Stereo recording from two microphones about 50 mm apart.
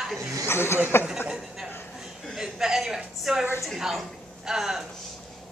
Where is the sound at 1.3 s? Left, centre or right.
Centre.